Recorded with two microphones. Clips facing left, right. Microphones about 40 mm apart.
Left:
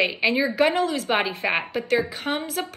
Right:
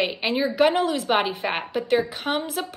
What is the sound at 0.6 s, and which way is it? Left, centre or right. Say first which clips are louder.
Speech: right 1 dB; right.